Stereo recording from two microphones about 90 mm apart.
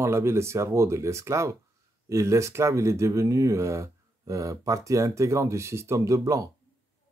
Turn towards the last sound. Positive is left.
turn(degrees=-40)  # may be behind; listen again after turning